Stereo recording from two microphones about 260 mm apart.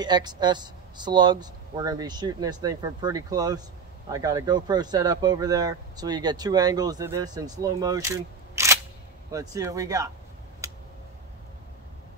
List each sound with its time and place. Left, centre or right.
0.0 s speech: centre